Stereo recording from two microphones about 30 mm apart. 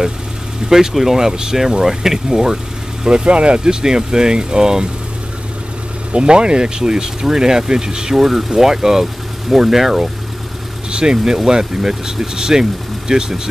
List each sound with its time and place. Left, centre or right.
0.6 s speech: right
0.9 s speech: centre
3.3 s speech: right
3.6 s speech: right
6.1 s speech: right
8.2 s speech: centre
10.9 s speech: right